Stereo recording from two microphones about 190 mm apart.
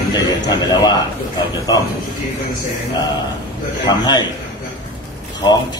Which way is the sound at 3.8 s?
20° left (ahead or behind).